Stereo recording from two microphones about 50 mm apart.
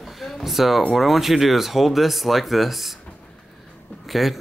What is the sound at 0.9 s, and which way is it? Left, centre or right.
Speech, centre.